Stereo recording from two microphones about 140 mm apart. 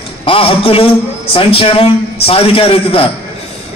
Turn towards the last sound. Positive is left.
turn(degrees=40)  # may be behind; listen again after turning